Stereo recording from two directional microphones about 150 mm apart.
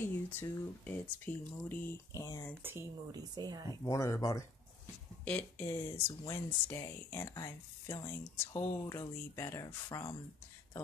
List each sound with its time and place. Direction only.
0.0 s speech: 15° left (ahead or behind)
2.6 s speech: 15° right (ahead or behind)
3.1 s a woman's voice: 25° right (ahead or behind)
3.8 s speech: 20° left (ahead or behind)
5.2 s speech: 10° left (ahead or behind)